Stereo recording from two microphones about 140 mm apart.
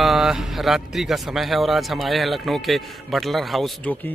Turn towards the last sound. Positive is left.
turn(degrees=0)  # may be behind; listen again after turning